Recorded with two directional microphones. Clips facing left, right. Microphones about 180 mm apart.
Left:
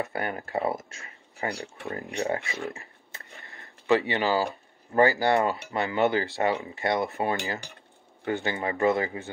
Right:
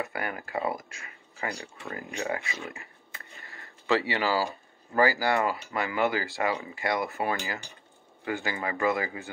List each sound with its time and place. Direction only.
0.0 s speech: 30° left (ahead or behind)
2.7 s a sound: 25° left (ahead or behind)
5.7 s speech: 25° left (ahead or behind)